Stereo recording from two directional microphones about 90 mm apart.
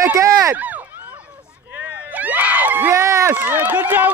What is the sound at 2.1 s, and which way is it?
Crowd, 20° right (ahead or behind).